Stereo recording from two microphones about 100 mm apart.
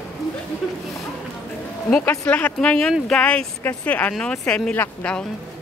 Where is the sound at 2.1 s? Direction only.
15° left (ahead or behind).